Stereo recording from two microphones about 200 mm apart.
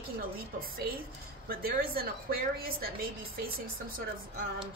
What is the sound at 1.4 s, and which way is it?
A woman's voice, 50° right (ahead or behind).